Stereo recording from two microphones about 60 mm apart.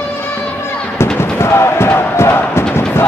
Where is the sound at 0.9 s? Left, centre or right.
Left.